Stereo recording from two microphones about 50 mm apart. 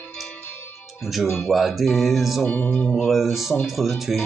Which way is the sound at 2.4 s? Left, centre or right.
Left.